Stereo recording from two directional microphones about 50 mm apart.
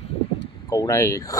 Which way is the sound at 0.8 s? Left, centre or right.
Left.